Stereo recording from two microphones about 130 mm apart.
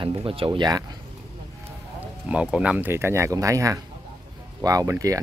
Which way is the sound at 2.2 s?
10° right (ahead or behind).